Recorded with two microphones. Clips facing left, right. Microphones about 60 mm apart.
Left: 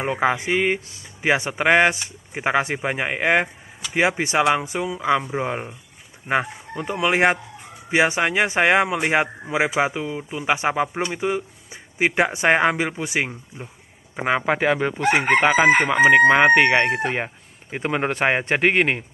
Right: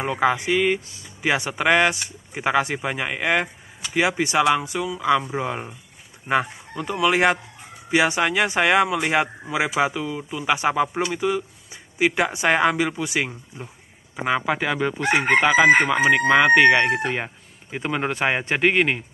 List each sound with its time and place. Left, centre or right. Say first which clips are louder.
0.0 s speech: even; centre
14.1 s chicken: left 2 dB; left